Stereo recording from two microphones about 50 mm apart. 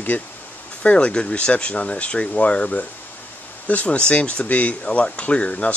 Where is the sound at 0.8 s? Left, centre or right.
Left.